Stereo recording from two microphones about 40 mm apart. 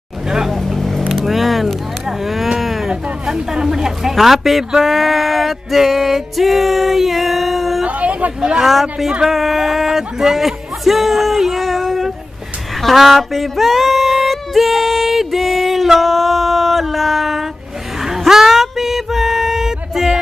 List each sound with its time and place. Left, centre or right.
0.5 s vehicle: centre
2.0 s speech: centre
2.6 s a sound: centre
2.9 s speech: centre
7.8 s a sound: right
8.4 s speech: centre
9.2 s a sound: centre
12.8 s female singing: centre
18.0 s music: centre